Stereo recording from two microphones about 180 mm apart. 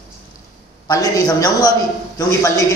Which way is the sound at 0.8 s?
20° left (ahead or behind).